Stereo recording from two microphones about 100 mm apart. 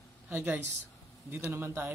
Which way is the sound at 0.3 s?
20° right (ahead or behind).